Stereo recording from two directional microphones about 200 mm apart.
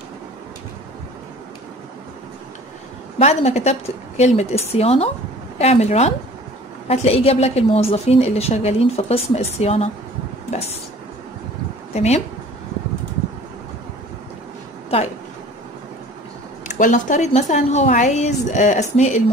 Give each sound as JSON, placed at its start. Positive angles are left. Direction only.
{"t": 3.2, "sound": "a woman's voice", "side_deg": 30}
{"t": 11.9, "sound": "speech", "side_deg": 35}
{"t": 16.6, "sound": "a woman's voice", "side_deg": 40}